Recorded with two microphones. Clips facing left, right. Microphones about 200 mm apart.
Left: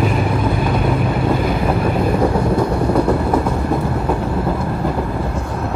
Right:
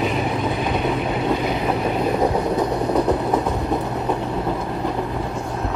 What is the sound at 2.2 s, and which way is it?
Train, 20° right (ahead or behind).